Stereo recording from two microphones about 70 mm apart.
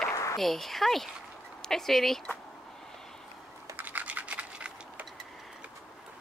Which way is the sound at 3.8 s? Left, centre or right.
Right.